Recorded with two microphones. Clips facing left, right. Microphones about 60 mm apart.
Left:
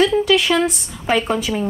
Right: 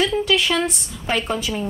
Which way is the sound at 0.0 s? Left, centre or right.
Centre.